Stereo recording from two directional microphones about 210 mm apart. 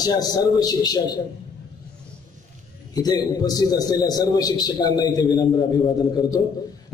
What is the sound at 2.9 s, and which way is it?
A man's voice, 20° left (ahead or behind).